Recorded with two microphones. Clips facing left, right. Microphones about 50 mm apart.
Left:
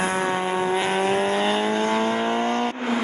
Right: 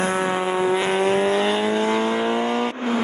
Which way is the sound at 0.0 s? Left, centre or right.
Centre.